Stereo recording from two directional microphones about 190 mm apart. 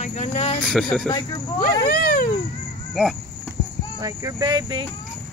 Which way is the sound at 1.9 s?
50° left (ahead or behind).